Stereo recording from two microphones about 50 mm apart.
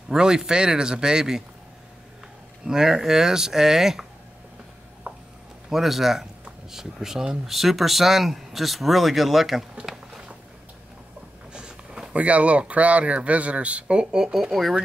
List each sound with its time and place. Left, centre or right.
0.1 s speech: centre
2.6 s speech: centre
5.1 s a sound: right
5.7 s speech: centre
11.5 s a sound: centre
12.2 s speech: right; by 14.8 s centre